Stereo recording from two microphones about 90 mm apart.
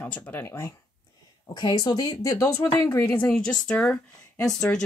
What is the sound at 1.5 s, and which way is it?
Speech, 55° left (ahead or behind).